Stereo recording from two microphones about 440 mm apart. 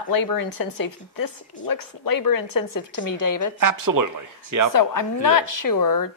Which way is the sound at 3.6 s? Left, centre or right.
Right.